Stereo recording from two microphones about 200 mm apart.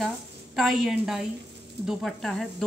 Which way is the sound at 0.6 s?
Centre (ahead or behind).